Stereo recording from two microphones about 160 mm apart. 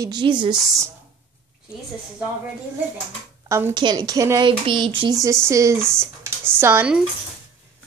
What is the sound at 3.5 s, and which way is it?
Speech, 15° right (ahead or behind).